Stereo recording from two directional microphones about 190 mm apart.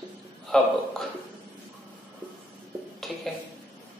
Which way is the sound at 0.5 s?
5° left (ahead or behind).